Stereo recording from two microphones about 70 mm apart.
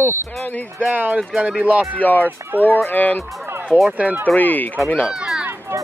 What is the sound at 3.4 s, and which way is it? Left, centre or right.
Music, right.